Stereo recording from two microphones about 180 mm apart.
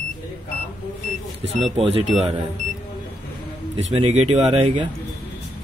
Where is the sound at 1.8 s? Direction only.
35° right (ahead or behind).